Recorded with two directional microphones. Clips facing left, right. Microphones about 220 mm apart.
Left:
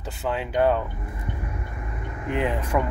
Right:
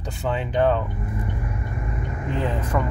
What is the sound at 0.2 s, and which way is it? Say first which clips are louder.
Speech: right 1 dB; 5° left (ahead or behind).